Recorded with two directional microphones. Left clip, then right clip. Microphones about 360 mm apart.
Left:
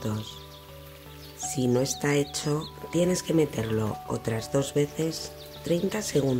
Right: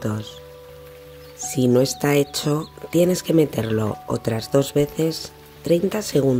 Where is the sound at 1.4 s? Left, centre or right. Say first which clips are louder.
Right 8 dB; centre.